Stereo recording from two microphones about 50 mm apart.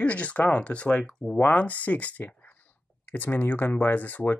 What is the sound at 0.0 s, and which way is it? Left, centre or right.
Speech, left.